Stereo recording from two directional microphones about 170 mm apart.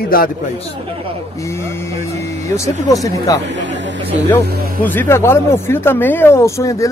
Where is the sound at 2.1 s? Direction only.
40° right (ahead or behind).